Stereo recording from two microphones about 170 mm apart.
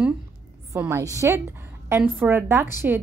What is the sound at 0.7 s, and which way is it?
A woman's voice, 15° right (ahead or behind).